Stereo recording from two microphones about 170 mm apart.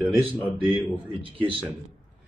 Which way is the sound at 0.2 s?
30° right (ahead or behind).